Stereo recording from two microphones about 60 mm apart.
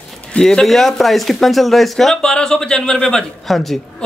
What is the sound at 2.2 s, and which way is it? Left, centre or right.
Speech, centre.